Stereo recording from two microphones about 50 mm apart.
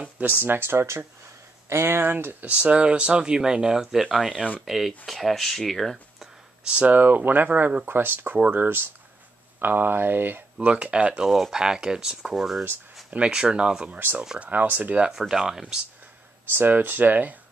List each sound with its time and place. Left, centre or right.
0.0 s speech: right
2.4 s speech: right; by 6.2 s centre
6.6 s speech: right
7.0 s speech: right
7.8 s speech: right
10.6 s speech: right
11.2 s speech: centre
13.1 s speech: centre
13.9 s speech: right
14.4 s speech: right
15.0 s speech: centre
16.5 s speech: right